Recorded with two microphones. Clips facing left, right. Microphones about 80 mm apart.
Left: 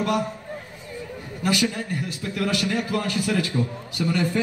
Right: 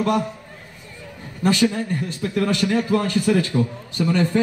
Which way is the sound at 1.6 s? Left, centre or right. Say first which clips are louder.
Right 5 dB; right.